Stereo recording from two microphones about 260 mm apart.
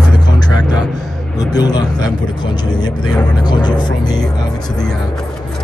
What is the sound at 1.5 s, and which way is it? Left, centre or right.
Speech, centre.